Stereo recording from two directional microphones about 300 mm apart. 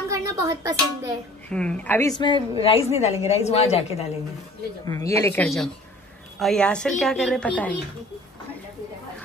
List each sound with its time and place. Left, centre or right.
0.1 s speech: centre
1.5 s a woman's voice: centre; by 4.1 s left
4.8 s a woman's voice: centre